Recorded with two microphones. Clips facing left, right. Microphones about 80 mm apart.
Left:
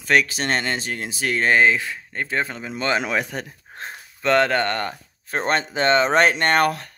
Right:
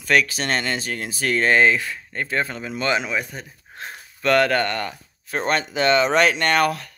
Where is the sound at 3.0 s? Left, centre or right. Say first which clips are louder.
Left 3 dB; left.